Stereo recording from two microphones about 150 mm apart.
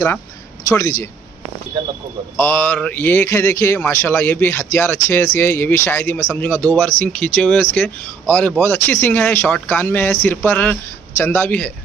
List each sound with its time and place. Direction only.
0.7 s speech: 20° left (ahead or behind)
2.3 s speech: 10° left (ahead or behind)